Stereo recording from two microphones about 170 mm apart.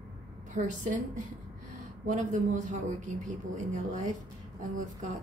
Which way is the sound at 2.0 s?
45° right (ahead or behind).